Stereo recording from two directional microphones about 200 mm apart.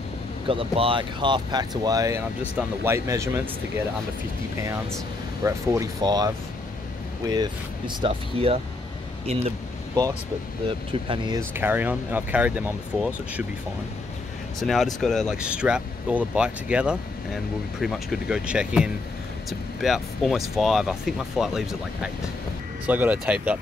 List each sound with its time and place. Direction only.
0.5 s speech: 25° right (ahead or behind)
5.4 s speech: 15° right (ahead or behind); by 9.5 s 30° right (ahead or behind)
10.9 s speech: 25° right (ahead or behind)
11.5 s speech: 10° right (ahead or behind)
14.6 s speech: centre (ahead or behind)